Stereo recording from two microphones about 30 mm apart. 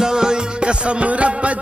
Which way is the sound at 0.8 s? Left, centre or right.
Right.